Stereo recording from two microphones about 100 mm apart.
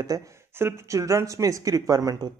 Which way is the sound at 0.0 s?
35° right (ahead or behind).